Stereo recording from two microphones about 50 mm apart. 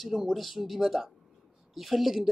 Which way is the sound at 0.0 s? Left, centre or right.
Centre.